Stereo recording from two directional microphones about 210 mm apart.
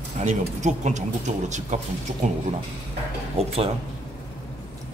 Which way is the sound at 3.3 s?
30° right (ahead or behind).